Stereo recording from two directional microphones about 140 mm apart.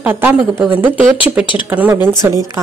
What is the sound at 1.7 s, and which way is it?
Speech, 10° right (ahead or behind).